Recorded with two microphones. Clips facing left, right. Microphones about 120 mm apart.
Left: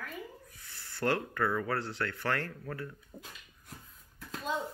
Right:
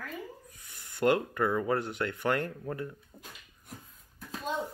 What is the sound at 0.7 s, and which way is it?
Speech, 20° right (ahead or behind).